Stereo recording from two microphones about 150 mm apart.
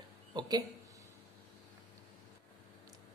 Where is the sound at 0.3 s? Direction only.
30° right (ahead or behind).